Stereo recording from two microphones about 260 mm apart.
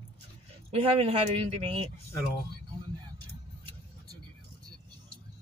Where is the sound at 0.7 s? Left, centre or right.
Right.